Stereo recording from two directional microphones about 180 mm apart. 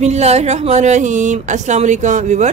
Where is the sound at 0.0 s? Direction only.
40° right (ahead or behind).